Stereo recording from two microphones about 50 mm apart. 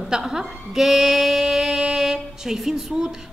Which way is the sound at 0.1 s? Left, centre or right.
Centre.